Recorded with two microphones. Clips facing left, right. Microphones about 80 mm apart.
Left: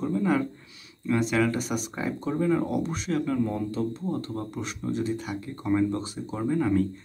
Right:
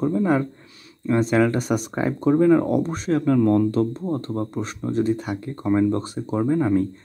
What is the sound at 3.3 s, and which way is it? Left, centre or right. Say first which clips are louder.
Speech: right 10 dB; right.